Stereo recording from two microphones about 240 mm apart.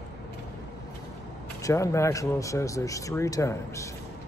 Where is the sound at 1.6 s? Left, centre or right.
Centre.